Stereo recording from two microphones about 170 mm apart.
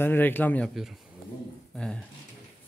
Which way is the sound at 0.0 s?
10° left (ahead or behind).